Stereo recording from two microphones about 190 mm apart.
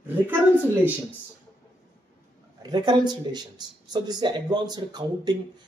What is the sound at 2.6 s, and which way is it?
Speech, 20° right (ahead or behind).